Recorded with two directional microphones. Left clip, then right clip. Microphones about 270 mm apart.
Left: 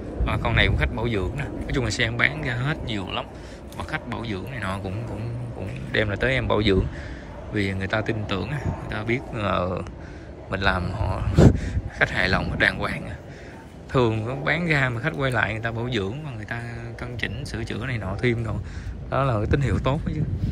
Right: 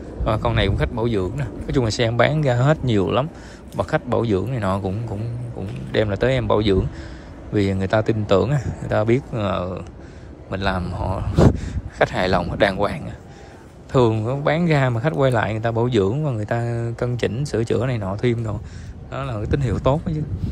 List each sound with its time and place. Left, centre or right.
0.2 s a man's voice: centre
5.9 s speech: centre